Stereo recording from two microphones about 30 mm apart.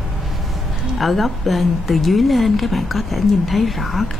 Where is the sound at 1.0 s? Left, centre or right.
Centre.